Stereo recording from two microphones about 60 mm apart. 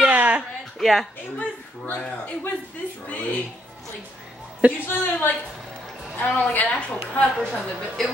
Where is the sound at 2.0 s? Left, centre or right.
Left.